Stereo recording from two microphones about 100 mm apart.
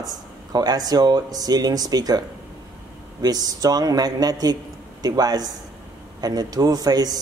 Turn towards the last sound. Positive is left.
turn(degrees=-40)  # may be behind; listen again after turning